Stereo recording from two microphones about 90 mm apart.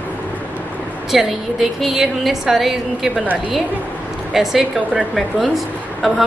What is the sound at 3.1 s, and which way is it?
Speech, 20° right (ahead or behind).